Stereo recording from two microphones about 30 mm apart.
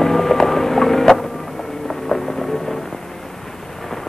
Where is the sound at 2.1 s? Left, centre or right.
Centre.